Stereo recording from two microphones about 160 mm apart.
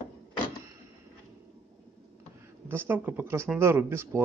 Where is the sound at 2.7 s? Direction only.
15° right (ahead or behind).